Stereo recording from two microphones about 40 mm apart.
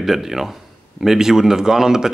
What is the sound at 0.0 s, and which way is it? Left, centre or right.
Speech, centre.